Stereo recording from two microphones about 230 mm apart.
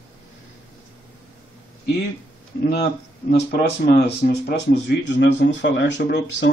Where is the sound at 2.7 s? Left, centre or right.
Left.